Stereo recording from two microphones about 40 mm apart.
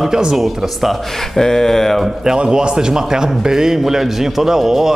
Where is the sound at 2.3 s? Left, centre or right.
Right.